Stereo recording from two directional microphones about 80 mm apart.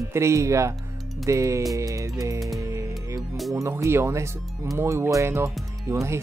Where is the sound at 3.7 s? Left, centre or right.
Right.